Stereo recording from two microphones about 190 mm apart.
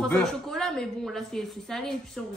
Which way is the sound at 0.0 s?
Centre (ahead or behind).